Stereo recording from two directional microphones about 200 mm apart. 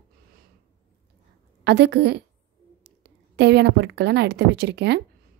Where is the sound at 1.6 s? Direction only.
55° right (ahead or behind).